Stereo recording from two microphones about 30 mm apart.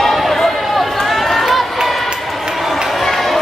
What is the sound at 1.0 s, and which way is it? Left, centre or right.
Run, centre.